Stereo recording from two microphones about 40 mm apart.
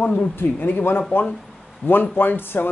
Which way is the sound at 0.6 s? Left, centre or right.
Left.